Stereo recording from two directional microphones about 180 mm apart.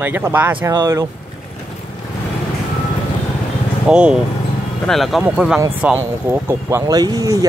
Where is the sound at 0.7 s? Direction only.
20° right (ahead or behind).